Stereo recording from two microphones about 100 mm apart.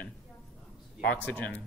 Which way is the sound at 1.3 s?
15° left (ahead or behind).